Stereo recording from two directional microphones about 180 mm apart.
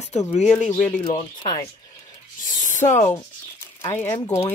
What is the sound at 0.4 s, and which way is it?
Speech, 40° left (ahead or behind).